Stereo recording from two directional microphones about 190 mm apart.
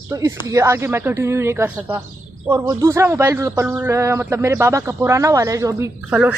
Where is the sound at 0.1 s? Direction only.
15° right (ahead or behind).